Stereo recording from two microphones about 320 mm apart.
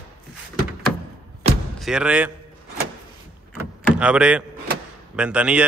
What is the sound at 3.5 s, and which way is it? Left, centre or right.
Door, centre.